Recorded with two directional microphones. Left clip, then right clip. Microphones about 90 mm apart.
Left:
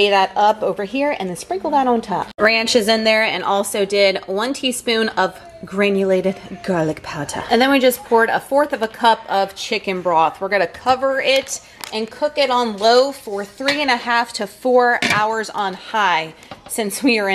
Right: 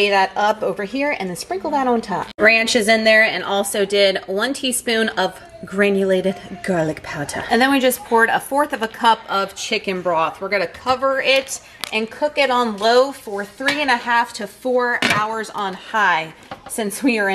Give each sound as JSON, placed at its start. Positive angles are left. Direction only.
{"t": 0.0, "sound": "a woman's voice", "side_deg": 20}
{"t": 12.0, "sound": "a woman's voice", "side_deg": -20}
{"t": 12.7, "sound": "a woman's voice", "side_deg": 20}